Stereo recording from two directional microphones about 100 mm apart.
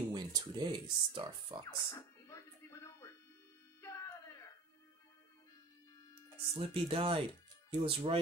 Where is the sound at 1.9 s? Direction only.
30° left (ahead or behind).